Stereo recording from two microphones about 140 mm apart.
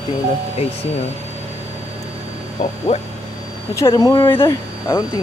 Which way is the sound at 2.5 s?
55° left (ahead or behind).